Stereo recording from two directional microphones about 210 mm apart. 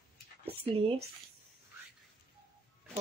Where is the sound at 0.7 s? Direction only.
30° right (ahead or behind).